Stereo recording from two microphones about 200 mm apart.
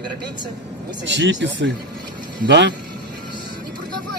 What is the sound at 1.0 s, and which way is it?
Speech, 65° right (ahead or behind).